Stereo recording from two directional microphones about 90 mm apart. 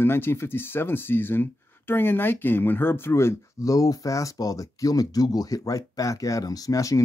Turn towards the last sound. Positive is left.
turn(degrees=40)  # may be behind; listen again after turning